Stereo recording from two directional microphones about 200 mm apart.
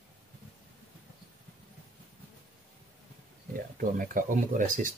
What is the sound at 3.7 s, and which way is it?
Speech, 45° right (ahead or behind).